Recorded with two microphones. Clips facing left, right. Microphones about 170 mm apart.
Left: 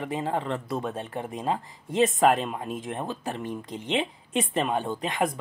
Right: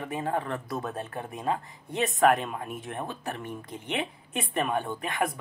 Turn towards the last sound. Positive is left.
turn(degrees=20)  # may be behind; listen again after turning